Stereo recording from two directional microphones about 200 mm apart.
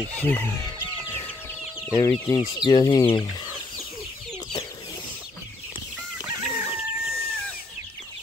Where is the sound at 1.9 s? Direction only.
15° left (ahead or behind).